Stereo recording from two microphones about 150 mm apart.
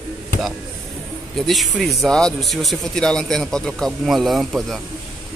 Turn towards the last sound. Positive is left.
turn(degrees=0)  # may be behind; listen again after turning